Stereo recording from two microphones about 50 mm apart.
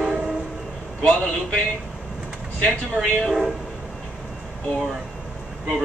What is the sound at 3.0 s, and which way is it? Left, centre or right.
Speech, right.